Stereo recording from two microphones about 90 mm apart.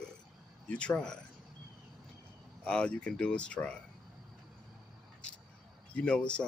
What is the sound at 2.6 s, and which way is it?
Speech, 10° left (ahead or behind).